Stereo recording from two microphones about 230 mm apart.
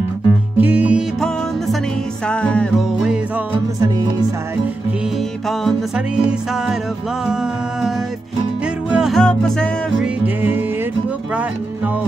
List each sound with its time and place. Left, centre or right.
0.6 s music: centre
3.8 s music: centre
5.5 s music: centre
8.9 s music: centre